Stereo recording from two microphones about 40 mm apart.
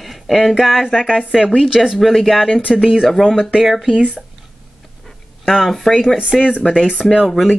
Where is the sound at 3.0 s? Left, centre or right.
Centre.